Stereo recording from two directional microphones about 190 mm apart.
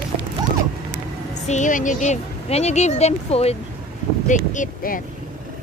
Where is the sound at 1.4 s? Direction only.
40° left (ahead or behind).